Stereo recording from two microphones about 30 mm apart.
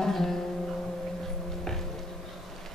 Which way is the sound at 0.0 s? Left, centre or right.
Centre.